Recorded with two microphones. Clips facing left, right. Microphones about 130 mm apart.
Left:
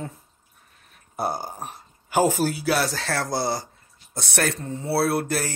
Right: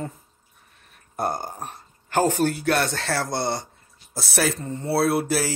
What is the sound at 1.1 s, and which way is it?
Speech, 5° left (ahead or behind).